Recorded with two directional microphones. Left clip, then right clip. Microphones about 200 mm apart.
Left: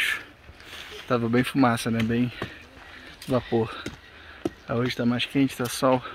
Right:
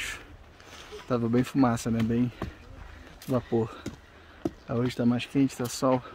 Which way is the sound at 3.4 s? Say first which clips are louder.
Left 3 dB; 5° right (ahead or behind).